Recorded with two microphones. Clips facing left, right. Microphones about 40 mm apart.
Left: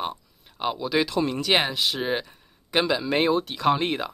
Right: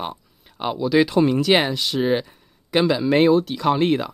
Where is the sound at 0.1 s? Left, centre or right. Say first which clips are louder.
Right 2 dB; centre.